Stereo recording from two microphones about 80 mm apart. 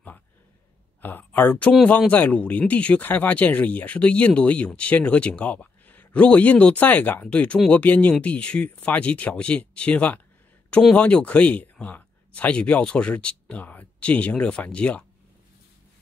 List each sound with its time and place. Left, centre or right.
1.0 s speech: left